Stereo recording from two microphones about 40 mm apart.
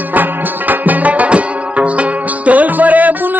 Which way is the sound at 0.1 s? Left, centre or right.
Right.